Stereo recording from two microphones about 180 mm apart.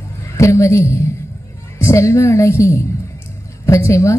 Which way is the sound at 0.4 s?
15° left (ahead or behind).